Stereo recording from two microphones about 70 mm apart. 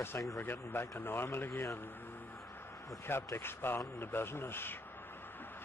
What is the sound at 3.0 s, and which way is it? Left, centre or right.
Speech, left.